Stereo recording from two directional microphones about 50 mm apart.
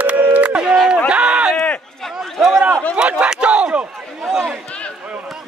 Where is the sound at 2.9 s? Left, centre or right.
Right.